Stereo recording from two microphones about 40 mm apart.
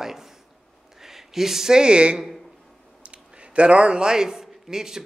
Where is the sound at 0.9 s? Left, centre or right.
Centre.